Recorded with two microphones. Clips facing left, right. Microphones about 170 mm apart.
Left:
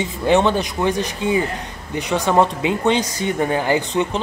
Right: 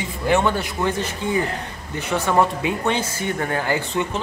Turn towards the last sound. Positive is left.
turn(degrees=20)  # may be behind; listen again after turning